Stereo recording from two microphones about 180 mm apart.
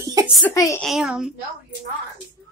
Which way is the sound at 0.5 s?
20° left (ahead or behind).